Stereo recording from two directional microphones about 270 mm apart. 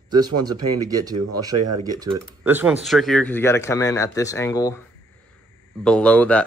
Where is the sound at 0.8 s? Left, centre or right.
Centre.